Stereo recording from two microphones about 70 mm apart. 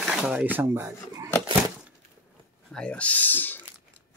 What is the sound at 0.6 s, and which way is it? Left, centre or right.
Speech, right.